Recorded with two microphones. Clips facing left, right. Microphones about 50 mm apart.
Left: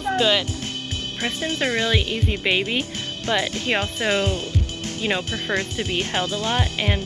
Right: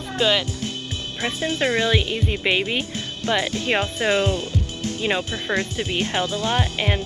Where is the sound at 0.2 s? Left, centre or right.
Centre.